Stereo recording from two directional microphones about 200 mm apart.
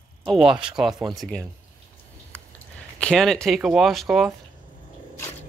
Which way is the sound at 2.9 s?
5° left (ahead or behind).